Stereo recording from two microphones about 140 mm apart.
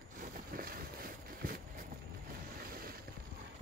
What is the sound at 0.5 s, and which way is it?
Vehicle, 90° right.